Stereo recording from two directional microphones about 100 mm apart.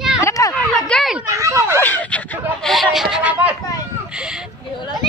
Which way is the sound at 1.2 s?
30° right (ahead or behind).